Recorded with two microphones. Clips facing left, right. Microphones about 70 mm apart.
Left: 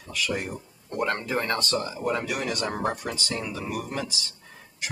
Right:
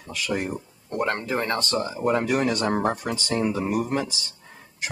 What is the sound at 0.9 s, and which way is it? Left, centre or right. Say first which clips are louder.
Speech: right 2 dB; right.